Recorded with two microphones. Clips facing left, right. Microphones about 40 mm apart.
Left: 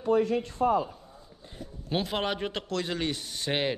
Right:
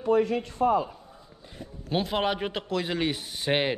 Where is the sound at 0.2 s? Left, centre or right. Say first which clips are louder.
Right 1 dB; right.